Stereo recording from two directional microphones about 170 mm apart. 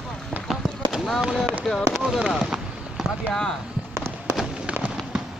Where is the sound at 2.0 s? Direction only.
5° right (ahead or behind).